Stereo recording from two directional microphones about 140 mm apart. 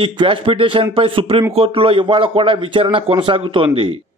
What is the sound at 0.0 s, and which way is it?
A man's voice, 40° right (ahead or behind).